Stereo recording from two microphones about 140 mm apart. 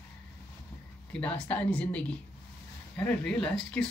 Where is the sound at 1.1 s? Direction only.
10° left (ahead or behind).